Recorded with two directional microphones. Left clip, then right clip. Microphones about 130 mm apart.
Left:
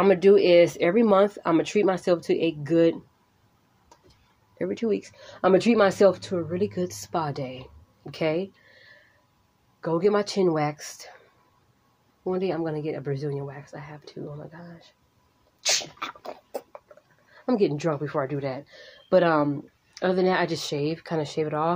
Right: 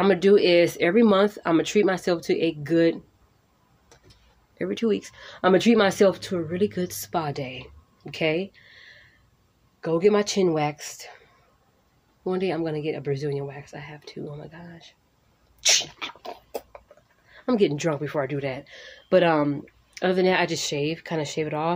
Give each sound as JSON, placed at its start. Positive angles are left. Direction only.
{"t": 0.0, "sound": "a woman's voice", "side_deg": -15}
{"t": 4.6, "sound": "speech", "side_deg": -25}
{"t": 9.8, "sound": "a woman's voice", "side_deg": -15}
{"t": 12.3, "sound": "speech", "side_deg": -25}
{"t": 15.6, "sound": "sneeze", "side_deg": -10}
{"t": 17.5, "sound": "a woman's voice", "side_deg": -20}